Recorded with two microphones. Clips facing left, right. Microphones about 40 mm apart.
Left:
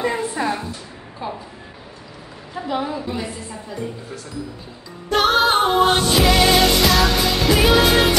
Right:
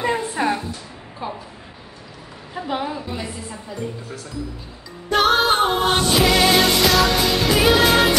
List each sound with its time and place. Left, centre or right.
0.4 s a woman's voice: right
1.2 s a woman's voice: centre
2.5 s a woman's voice: centre
5.1 s music: centre